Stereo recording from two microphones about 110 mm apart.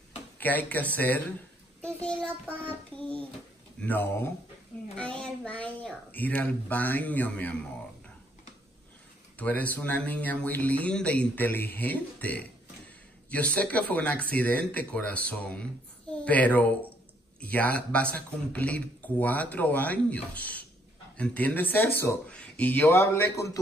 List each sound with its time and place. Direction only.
0.4 s a child's voice: 15° left (ahead or behind)
3.8 s a man's voice: 20° left (ahead or behind)
9.4 s a man's voice: 15° left (ahead or behind)